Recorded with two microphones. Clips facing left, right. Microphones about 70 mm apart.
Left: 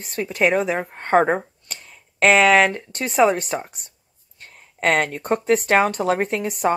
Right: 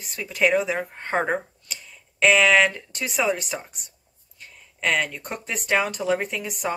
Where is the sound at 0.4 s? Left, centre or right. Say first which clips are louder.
Left 2 dB; left.